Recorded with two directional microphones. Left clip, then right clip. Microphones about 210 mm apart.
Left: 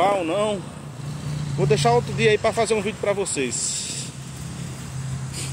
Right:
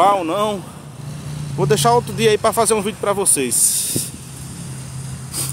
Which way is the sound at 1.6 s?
30° right (ahead or behind).